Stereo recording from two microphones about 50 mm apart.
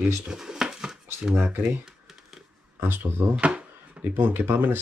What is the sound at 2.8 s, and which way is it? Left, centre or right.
Speech, right.